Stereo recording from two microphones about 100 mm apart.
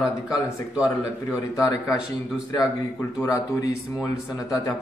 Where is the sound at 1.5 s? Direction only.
35° left (ahead or behind).